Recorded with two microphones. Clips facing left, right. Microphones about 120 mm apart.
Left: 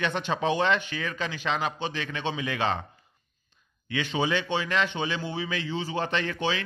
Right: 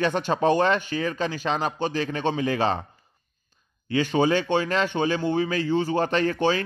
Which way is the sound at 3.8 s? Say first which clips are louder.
Right 6 dB; 40° right (ahead or behind).